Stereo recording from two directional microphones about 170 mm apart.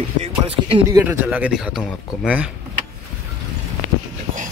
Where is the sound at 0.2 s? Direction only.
30° right (ahead or behind).